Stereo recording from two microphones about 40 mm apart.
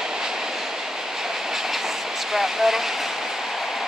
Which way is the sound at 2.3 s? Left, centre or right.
Centre.